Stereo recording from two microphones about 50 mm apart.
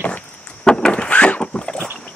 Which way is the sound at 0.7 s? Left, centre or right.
Centre.